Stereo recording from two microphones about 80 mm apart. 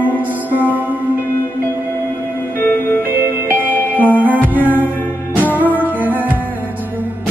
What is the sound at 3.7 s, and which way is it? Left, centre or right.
Music, left.